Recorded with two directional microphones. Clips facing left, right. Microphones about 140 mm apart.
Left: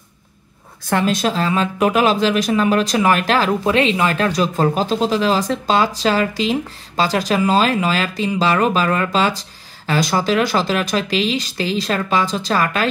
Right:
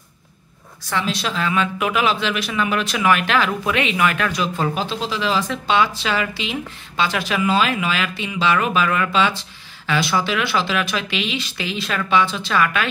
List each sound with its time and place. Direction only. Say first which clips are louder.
0.8 s speech: left 6 dB; 50° left (ahead or behind)